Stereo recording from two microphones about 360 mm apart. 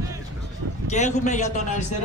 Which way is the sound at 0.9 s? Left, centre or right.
Centre.